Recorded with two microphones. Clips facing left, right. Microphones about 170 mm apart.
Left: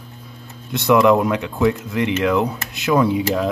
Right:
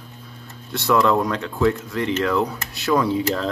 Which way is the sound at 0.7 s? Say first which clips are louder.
Left 4 dB; 20° left (ahead or behind).